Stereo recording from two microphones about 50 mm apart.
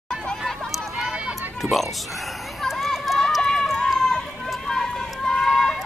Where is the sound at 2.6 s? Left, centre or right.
Centre.